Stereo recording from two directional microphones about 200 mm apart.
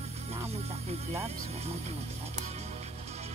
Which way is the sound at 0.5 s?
30° right (ahead or behind).